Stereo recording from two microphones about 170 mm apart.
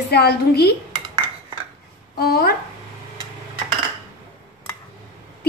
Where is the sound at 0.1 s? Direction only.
70° left (ahead or behind).